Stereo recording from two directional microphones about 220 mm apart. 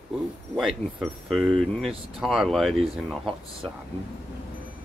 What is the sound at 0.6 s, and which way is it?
Speech, centre (ahead or behind).